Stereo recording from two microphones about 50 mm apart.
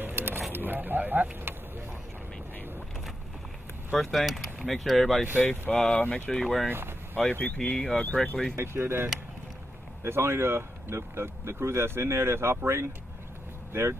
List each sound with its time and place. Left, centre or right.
0.0 s a sound: right
0.5 s speech: right
4.0 s speech: centre
5.4 s speech: left
5.8 s speech: left
6.4 s speech: centre
8.0 s speech: left
8.5 s speech: right